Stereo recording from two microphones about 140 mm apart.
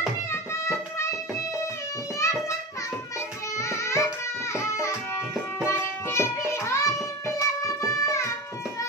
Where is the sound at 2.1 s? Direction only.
20° left (ahead or behind).